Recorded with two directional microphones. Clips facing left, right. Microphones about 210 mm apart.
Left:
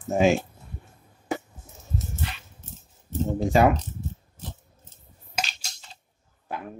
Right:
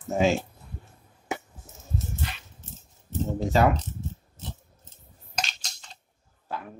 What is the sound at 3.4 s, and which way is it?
Speech, 15° left (ahead or behind).